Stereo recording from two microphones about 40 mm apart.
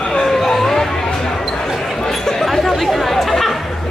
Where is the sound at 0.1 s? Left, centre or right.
Centre.